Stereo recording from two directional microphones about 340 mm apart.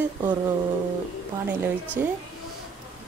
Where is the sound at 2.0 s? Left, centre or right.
Centre.